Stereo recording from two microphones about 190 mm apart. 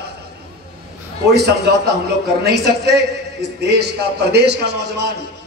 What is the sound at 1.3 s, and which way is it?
A man's voice, 60° right (ahead or behind).